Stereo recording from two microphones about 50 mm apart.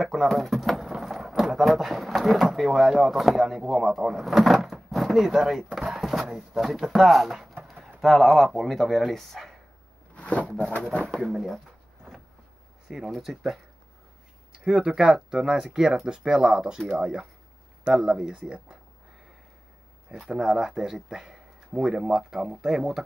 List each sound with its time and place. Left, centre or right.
0.0 s speech: centre
7.6 s bird: centre
8.0 s speech: centre
10.1 s a sound: left
10.9 s speech: centre
11.1 s speech: centre
12.8 s speech: centre
20.2 s speech: centre